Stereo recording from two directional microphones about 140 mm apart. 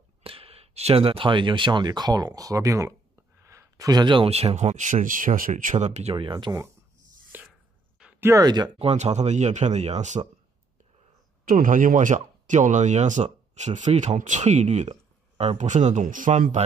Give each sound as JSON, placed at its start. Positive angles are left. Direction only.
{"t": 0.2, "sound": "speech", "side_deg": -40}
{"t": 6.1, "sound": "speech", "side_deg": -35}
{"t": 7.3, "sound": "a sound", "side_deg": -10}
{"t": 8.7, "sound": "speech", "side_deg": -50}
{"t": 11.4, "sound": "speech", "side_deg": -75}